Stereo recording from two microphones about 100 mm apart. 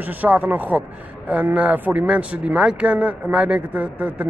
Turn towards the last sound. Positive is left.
turn(degrees=-15)  # may be behind; listen again after turning